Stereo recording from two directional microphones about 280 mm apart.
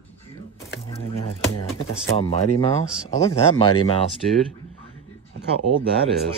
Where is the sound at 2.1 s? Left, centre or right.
Left.